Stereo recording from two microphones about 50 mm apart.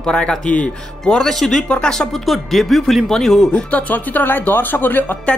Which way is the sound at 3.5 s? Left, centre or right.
Left.